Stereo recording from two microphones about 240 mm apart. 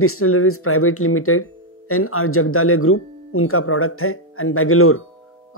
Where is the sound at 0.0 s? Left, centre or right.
Left.